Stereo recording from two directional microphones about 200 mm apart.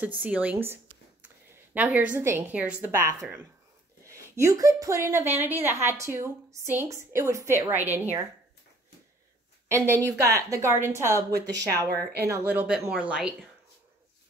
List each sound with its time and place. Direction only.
0.0 s a woman's voice: 5° right (ahead or behind)
9.7 s a woman's voice: 15° right (ahead or behind)
11.9 s speech: 50° right (ahead or behind)
12.3 s a woman's voice: 10° right (ahead or behind)